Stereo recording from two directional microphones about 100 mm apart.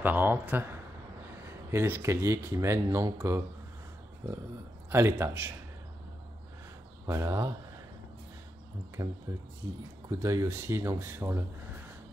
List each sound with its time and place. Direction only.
0.0 s speech: 20° right (ahead or behind)
1.7 s speech: 25° right (ahead or behind)
4.8 s speech: 25° right (ahead or behind)
7.1 s speech: 30° right (ahead or behind)
9.0 s speech: 30° right (ahead or behind)